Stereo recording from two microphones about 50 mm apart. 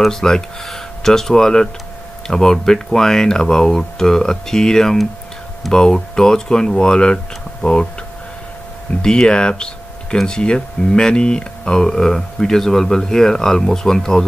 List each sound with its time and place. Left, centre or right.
0.0 s speech: centre
9.0 s speech: centre